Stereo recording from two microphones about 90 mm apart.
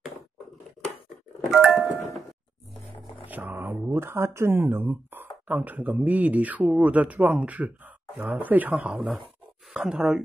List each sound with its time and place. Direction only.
1.6 s music: centre (ahead or behind)
3.3 s speech: 20° right (ahead or behind)